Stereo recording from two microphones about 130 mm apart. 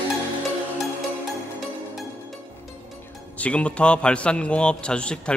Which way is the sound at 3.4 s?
10° left (ahead or behind).